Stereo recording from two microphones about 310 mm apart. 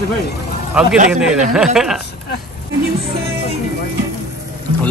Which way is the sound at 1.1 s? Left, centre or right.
Centre.